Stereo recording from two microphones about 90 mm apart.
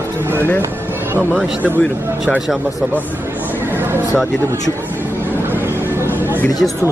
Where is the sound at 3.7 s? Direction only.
25° right (ahead or behind).